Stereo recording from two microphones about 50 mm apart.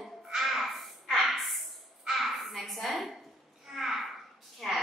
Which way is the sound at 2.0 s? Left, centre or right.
Centre.